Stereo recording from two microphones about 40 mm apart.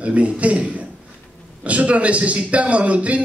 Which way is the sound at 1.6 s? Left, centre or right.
Right.